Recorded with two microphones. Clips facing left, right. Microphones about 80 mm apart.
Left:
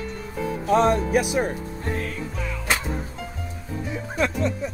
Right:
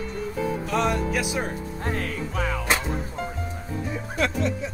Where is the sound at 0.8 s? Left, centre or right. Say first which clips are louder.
Left 3 dB; left.